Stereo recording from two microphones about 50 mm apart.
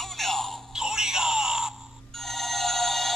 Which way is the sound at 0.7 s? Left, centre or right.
Centre.